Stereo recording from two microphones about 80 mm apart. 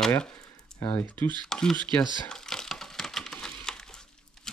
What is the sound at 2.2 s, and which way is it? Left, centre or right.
Typing, centre.